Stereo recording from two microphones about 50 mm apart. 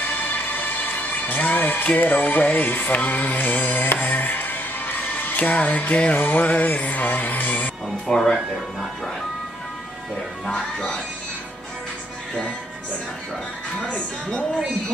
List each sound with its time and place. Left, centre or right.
0.0 s speech: left
6.1 s music: left
6.4 s music: left
8.1 s speech: centre
10.4 s speech: centre
13.7 s speech: left